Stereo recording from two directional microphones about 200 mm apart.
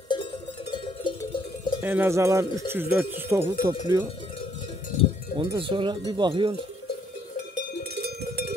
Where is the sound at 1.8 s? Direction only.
10° right (ahead or behind).